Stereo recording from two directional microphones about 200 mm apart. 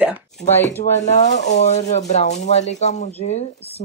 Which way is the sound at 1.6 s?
35° left (ahead or behind).